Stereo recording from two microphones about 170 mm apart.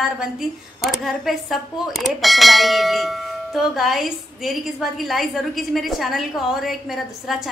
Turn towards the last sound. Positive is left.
turn(degrees=0)  # may be behind; listen again after turning